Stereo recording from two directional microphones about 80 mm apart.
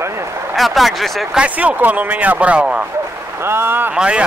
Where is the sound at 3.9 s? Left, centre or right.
Centre.